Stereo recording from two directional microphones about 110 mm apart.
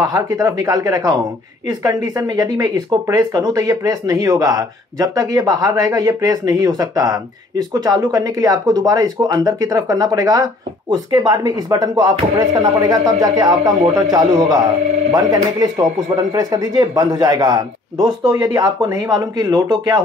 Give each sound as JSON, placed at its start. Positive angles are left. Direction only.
{"t": 0.0, "sound": "speech", "side_deg": -30}